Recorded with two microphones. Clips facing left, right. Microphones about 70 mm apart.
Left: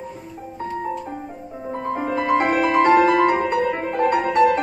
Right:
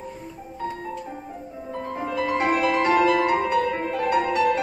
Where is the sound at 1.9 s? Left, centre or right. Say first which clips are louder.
Left 5 dB; left.